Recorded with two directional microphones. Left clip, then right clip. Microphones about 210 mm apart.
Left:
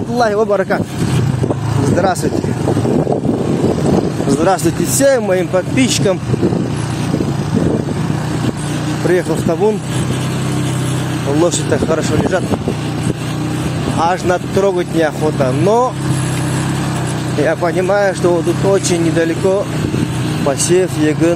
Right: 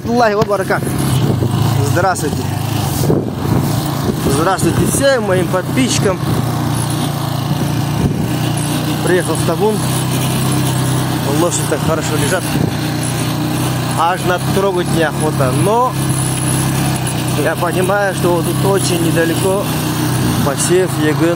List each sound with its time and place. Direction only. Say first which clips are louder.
5.0 s speech: left 2 dB; 30° left (ahead or behind)
11.4 s speech: left 4 dB; 25° left (ahead or behind)
14.0 s speech: even; 35° left (ahead or behind)
17.5 s speech: left 1 dB; 25° left (ahead or behind)
20.4 s speech: left 2 dB; 25° left (ahead or behind)